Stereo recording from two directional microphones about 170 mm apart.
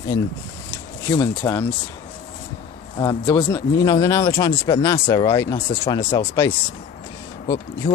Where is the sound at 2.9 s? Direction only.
20° left (ahead or behind).